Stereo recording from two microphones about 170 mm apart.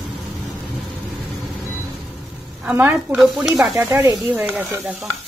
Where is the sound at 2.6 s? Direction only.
10° right (ahead or behind).